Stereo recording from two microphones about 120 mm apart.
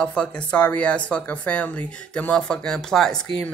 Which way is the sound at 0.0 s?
10° left (ahead or behind).